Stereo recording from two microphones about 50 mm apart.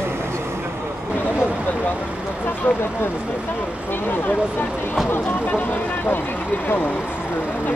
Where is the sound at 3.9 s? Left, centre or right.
Left.